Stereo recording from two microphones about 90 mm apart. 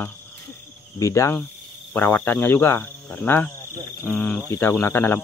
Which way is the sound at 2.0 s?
20° left (ahead or behind).